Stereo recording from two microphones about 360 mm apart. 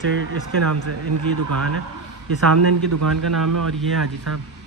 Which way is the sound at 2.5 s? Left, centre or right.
Right.